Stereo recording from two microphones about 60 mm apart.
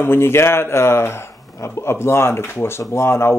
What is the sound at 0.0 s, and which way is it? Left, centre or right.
Speech, left.